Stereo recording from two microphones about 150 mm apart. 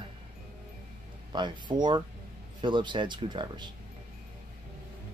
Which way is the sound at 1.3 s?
30° right (ahead or behind).